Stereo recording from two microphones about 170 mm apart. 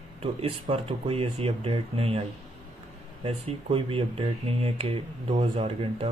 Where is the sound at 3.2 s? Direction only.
35° right (ahead or behind).